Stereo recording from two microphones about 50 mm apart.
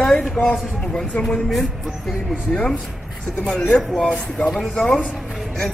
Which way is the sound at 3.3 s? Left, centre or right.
Centre.